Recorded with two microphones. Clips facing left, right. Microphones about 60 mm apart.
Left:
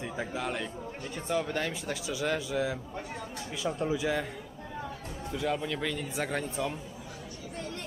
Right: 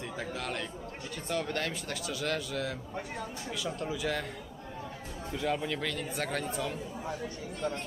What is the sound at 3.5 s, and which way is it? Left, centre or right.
Speech, left.